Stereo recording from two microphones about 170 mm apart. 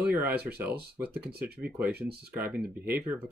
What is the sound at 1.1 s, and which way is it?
Speech, 70° right (ahead or behind).